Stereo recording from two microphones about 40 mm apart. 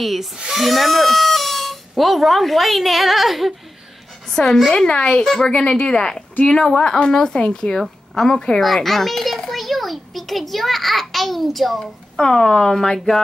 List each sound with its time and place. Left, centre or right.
0.0 s a child's voice: centre
4.3 s a woman's voice: centre
5.2 s speech: centre
5.5 s a woman's voice: left
7.8 s a sound: centre
8.3 s a woman's voice: centre
8.5 s a child's voice: centre
11.8 s speech: centre